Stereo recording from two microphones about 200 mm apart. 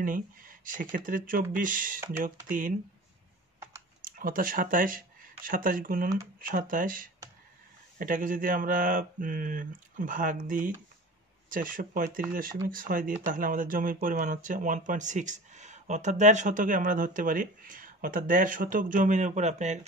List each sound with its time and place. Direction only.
0.0 s speech: 45° right (ahead or behind)
4.0 s speech: 45° right (ahead or behind)